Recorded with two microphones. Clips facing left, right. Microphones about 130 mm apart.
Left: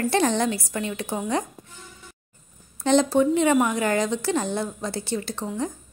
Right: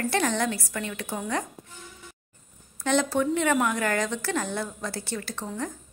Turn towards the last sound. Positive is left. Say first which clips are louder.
# left 5 dB
turn(degrees=20)  # may be behind; listen again after turning